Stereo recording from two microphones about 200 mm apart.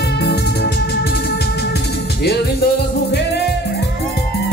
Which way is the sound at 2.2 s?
55° left (ahead or behind).